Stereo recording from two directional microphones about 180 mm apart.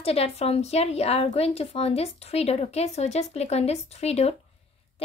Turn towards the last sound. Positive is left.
turn(degrees=35)  # may be behind; listen again after turning